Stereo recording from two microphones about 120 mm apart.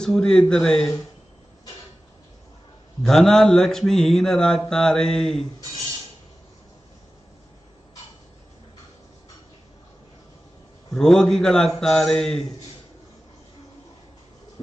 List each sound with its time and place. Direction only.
0.0 s mantra: 5° left (ahead or behind)
3.0 s mantra: 5° left (ahead or behind)
10.9 s mantra: 5° left (ahead or behind)